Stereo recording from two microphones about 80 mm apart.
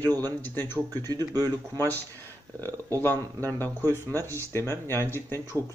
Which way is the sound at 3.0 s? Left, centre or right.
Left.